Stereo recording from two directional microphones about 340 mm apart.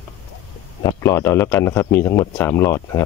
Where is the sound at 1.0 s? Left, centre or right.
Centre.